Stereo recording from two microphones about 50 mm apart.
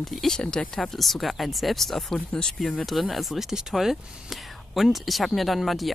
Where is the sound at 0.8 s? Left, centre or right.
Centre.